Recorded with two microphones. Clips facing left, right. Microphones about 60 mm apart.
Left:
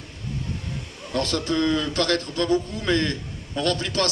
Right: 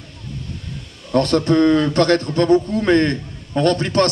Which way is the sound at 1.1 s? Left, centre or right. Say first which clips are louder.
Right 9 dB; right.